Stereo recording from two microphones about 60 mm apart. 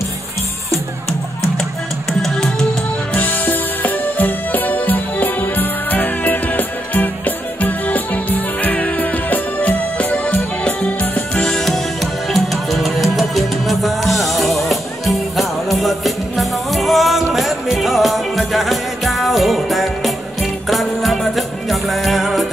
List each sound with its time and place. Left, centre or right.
3.2 s music: left
11.5 s music: centre